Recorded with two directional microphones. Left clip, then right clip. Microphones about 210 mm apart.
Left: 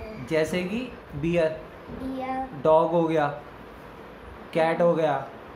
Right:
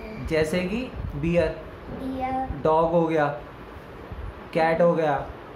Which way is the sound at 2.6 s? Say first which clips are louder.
Left 1 dB; centre (ahead or behind).